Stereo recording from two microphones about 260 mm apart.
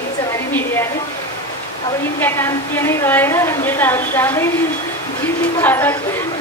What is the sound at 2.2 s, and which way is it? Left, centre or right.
A woman's voice, centre.